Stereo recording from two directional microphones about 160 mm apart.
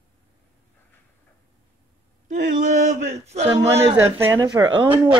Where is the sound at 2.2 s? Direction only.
50° right (ahead or behind).